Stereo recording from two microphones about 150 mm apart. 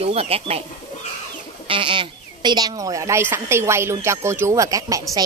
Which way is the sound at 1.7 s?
35° right (ahead or behind).